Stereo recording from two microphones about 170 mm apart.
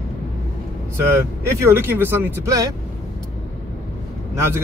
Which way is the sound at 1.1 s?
15° right (ahead or behind).